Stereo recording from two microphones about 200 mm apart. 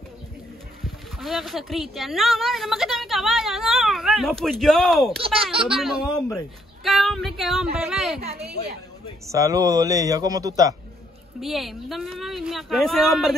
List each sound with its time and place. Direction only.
0.8 s speech: centre (ahead or behind)
5.2 s a child's voice: 25° right (ahead or behind)
5.8 s speech: centre (ahead or behind)
8.2 s a child's voice: 30° right (ahead or behind)
9.3 s a man's voice: 15° right (ahead or behind)
11.4 s speech: centre (ahead or behind)